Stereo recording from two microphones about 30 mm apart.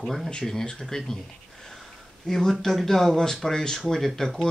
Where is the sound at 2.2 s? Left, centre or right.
Centre.